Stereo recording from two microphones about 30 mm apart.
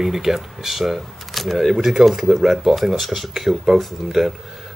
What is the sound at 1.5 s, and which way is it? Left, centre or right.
Speech, centre.